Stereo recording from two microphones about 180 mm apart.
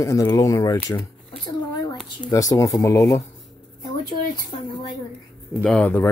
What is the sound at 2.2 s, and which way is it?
Speech, 20° left (ahead or behind).